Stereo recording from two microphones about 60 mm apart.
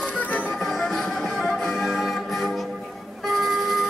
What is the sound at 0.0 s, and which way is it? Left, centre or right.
Music, left.